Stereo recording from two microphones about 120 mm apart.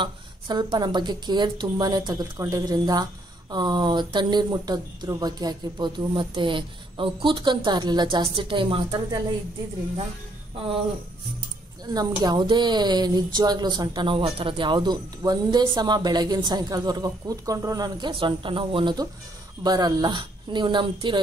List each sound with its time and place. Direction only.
0.0 s a woman's voice: 40° right (ahead or behind)
11.8 s a woman's voice: 35° right (ahead or behind)
19.6 s a woman's voice: 35° right (ahead or behind)